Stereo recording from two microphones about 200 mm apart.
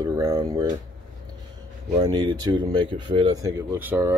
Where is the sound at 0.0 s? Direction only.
15° right (ahead or behind).